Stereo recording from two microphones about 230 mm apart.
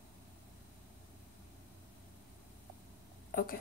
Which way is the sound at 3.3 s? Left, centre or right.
Left.